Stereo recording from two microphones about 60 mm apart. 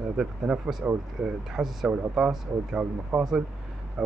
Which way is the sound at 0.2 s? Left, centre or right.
Centre.